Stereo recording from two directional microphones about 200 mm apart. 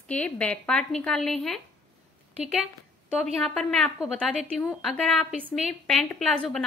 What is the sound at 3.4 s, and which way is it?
A woman's voice, 5° left (ahead or behind).